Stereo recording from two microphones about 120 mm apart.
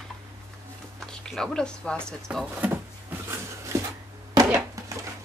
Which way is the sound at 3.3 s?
25° right (ahead or behind).